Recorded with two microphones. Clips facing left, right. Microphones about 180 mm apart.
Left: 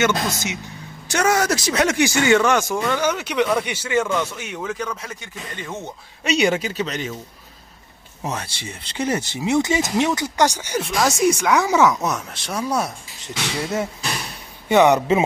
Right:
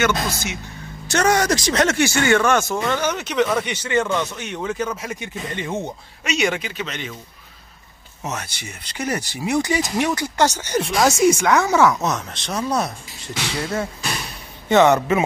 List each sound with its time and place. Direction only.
0.0 s speech: 20° left (ahead or behind)
1.0 s speech: 5° left (ahead or behind)
4.6 s speech: 5° right (ahead or behind)
5.2 s speech: 20° right (ahead or behind)
6.2 s speech: 30° left (ahead or behind)
8.3 s speech: 30° left (ahead or behind); by 10.8 s 10° left (ahead or behind)
10.8 s speech: centre (ahead or behind)
11.5 s speech: 15° left (ahead or behind)
13.6 s speech: 20° left (ahead or behind)